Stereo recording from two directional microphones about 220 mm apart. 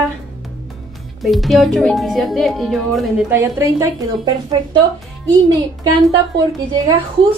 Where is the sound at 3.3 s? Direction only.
15° right (ahead or behind).